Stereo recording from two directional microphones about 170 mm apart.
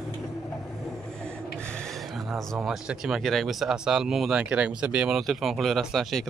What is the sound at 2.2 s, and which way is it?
Speech, centre (ahead or behind).